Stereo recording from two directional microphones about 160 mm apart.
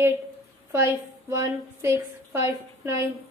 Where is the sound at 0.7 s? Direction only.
15° right (ahead or behind).